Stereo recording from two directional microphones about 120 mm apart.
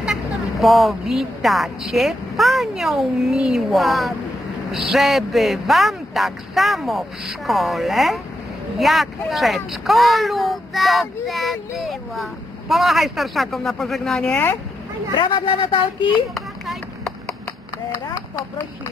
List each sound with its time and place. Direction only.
0.0 s speech: centre (ahead or behind)
15.1 s speech: 40° left (ahead or behind)
16.1 s a sound: centre (ahead or behind)